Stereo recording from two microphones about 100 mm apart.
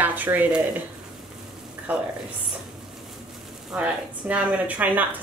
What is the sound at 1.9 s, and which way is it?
Speech, 15° right (ahead or behind).